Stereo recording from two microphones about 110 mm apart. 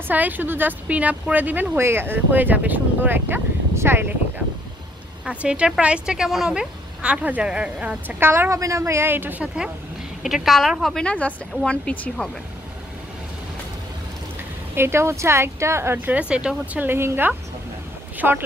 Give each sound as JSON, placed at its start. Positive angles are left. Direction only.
{"t": 0.1, "sound": "speech", "side_deg": -15}
{"t": 5.2, "sound": "speech", "side_deg": -10}
{"t": 8.3, "sound": "a woman's voice", "side_deg": -25}
{"t": 10.2, "sound": "a woman's voice", "side_deg": 0}
{"t": 14.8, "sound": "a woman's voice", "side_deg": -25}
{"t": 16.2, "sound": "speech", "side_deg": -10}
{"t": 18.1, "sound": "a sound", "side_deg": -20}